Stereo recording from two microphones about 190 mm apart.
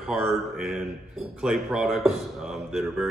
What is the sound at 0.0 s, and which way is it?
Speech, centre (ahead or behind).